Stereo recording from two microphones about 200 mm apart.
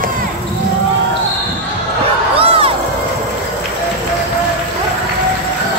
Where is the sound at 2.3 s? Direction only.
30° right (ahead or behind).